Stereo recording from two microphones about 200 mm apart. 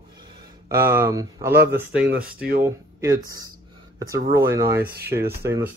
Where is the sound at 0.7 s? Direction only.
10° right (ahead or behind).